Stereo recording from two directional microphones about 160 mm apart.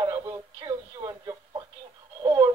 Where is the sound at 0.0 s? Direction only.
20° right (ahead or behind).